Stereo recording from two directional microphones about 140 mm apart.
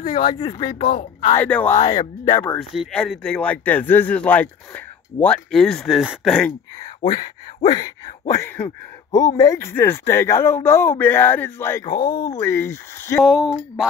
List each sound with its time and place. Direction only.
0.0 s speech: 40° left (ahead or behind)
0.7 s speech: 45° left (ahead or behind)
1.4 s speech: 10° left (ahead or behind)
1.8 s speech: 30° left (ahead or behind)
2.7 s speech: centre (ahead or behind)
7.0 s speech: 35° left (ahead or behind)
8.3 s speech: 20° left (ahead or behind)
11.8 s speech: 30° left (ahead or behind)
12.4 s speech: 20° left (ahead or behind)
13.2 s speech: 5° right (ahead or behind)